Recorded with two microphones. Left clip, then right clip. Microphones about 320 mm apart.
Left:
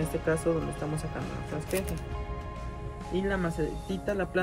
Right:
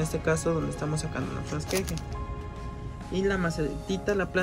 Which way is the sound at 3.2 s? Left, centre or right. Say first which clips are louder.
Right 4 dB; centre.